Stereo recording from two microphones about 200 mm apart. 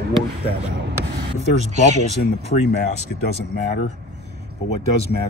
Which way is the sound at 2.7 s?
50° left (ahead or behind).